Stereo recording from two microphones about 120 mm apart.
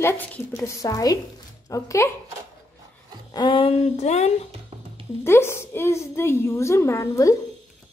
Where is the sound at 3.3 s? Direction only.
40° left (ahead or behind); by 4.3 s 70° left (ahead or behind).